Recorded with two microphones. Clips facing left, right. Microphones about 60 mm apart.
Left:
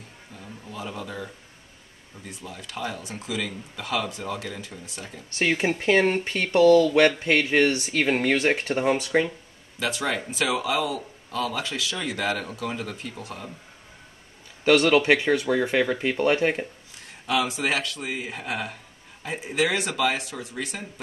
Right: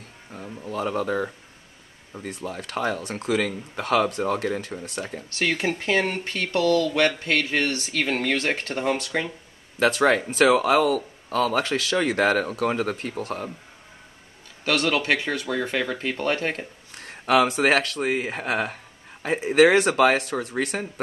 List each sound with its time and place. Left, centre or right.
0.3 s a sound: right
0.7 s speech: right
5.3 s speech: centre
9.8 s speech: right
14.6 s a man's voice: left
14.9 s speech: centre
16.9 s speech: right